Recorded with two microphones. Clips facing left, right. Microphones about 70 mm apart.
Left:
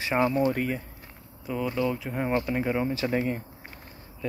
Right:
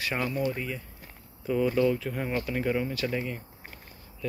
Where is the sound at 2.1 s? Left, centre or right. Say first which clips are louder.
Left 4 dB; left.